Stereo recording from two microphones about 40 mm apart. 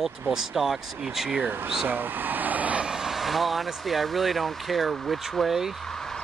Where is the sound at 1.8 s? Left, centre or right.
Right.